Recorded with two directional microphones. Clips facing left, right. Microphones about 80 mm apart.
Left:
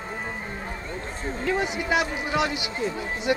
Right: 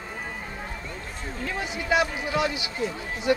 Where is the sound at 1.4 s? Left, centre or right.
Left.